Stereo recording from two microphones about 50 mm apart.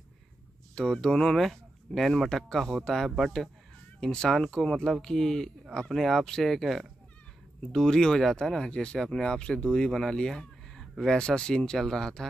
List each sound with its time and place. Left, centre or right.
0.7 s speech: centre